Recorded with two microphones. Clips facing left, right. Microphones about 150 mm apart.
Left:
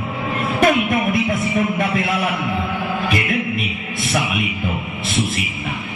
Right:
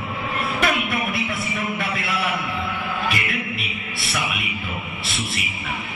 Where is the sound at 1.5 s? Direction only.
50° left (ahead or behind).